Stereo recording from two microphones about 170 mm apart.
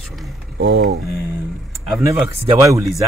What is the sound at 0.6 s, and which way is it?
Speech, 65° right (ahead or behind).